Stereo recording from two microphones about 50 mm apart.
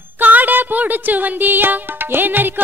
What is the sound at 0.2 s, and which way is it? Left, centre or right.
Music, right.